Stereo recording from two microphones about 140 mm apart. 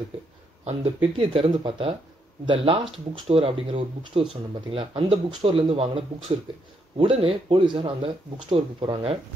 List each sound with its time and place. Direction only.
1.1 s speech: 45° right (ahead or behind)